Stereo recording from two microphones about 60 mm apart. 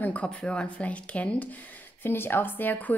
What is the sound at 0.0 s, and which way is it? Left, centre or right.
A woman's voice, left.